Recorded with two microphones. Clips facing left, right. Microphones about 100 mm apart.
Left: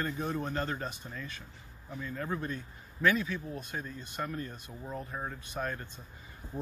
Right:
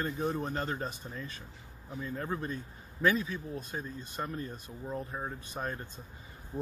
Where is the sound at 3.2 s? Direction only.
35° right (ahead or behind).